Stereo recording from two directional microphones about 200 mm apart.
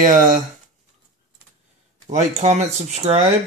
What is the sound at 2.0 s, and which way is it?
Speech, 35° right (ahead or behind).